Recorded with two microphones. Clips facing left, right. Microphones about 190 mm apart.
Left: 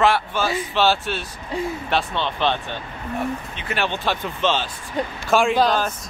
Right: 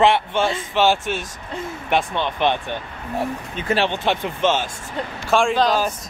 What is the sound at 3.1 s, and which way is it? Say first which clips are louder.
Speech: right 2 dB; 35° right (ahead or behind).